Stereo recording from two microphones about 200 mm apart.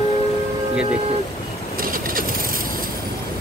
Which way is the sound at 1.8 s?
45° right (ahead or behind).